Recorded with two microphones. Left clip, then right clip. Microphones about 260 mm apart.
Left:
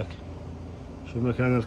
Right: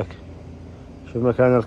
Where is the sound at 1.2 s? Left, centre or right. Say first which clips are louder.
Right 10 dB; centre.